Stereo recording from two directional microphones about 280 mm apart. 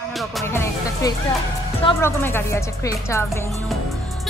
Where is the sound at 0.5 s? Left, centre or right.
Centre.